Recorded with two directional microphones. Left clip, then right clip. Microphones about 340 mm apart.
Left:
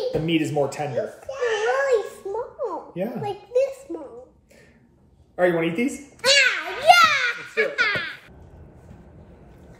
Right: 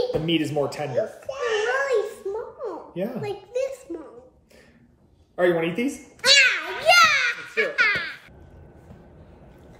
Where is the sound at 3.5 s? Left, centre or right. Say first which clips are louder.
Left 6 dB; centre.